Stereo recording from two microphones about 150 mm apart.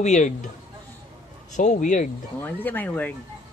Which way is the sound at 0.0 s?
50° left (ahead or behind).